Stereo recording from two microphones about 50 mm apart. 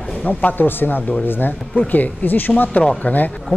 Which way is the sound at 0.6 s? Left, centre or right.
Left.